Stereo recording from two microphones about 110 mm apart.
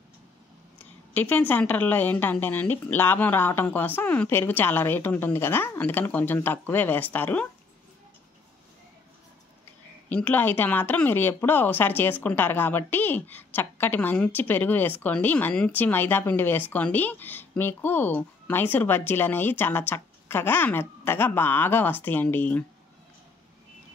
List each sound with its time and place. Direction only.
1.1 s speech: 15° left (ahead or behind)
10.0 s speech: 15° left (ahead or behind)